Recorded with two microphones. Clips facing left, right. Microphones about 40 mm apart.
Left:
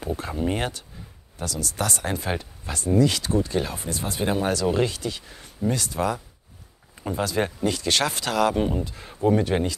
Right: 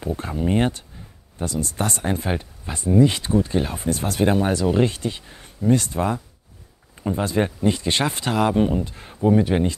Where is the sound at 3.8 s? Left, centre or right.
Right.